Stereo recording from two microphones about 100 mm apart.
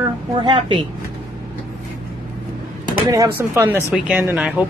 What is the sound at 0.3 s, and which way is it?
Speech, 50° right (ahead or behind).